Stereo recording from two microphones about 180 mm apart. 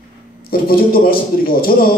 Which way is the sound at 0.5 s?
55° left (ahead or behind).